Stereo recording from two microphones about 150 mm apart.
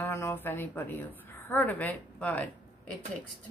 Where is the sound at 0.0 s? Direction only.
15° left (ahead or behind).